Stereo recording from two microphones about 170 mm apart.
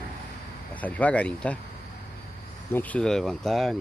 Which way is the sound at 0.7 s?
10° left (ahead or behind).